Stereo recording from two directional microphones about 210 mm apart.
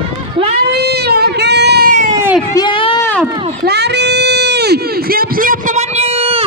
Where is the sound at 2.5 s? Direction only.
20° left (ahead or behind).